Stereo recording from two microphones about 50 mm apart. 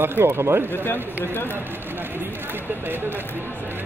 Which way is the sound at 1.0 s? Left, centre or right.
Right.